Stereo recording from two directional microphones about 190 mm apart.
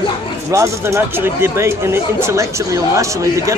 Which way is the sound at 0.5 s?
15° right (ahead or behind).